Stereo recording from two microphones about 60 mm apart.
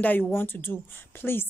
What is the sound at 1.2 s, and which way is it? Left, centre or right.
Speech, left.